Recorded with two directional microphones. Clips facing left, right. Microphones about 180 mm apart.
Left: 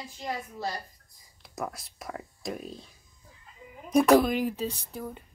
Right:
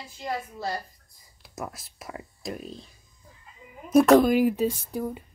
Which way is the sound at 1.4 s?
5° right (ahead or behind).